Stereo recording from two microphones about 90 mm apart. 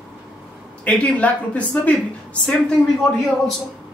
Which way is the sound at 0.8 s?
15° left (ahead or behind).